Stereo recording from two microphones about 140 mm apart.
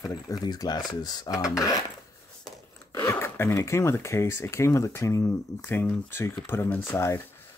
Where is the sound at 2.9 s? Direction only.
20° left (ahead or behind).